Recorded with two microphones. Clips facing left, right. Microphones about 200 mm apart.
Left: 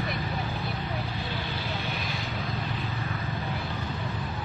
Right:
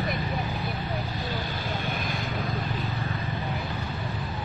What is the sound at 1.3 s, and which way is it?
Vehicle, 45° right (ahead or behind).